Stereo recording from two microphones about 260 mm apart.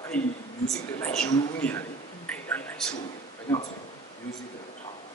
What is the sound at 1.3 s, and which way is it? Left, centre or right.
Speech, centre.